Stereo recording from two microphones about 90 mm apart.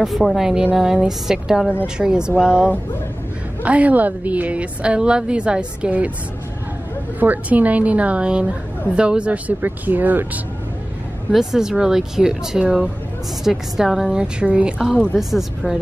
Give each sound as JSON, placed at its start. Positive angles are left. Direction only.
{"t": 0.0, "sound": "a woman's voice", "side_deg": 0}
{"t": 7.2, "sound": "a woman's voice", "side_deg": -15}
{"t": 11.3, "sound": "a woman's voice", "side_deg": -5}